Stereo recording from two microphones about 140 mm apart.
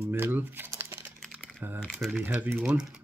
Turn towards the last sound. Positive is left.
turn(degrees=-5)  # may be behind; listen again after turning